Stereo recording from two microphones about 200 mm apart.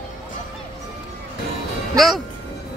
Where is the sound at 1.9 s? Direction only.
Centre (ahead or behind).